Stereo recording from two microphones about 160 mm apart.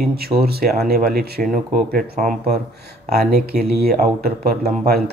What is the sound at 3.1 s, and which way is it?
Speech, 80° right.